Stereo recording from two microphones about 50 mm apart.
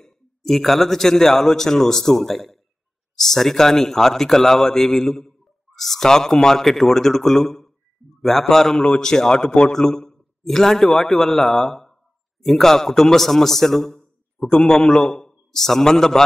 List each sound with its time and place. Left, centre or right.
0.0 s a man's voice: centre